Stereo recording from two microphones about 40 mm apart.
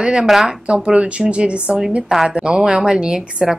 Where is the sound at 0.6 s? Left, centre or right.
Right.